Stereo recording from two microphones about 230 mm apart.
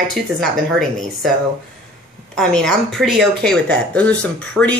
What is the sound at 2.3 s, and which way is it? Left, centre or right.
Speech, centre.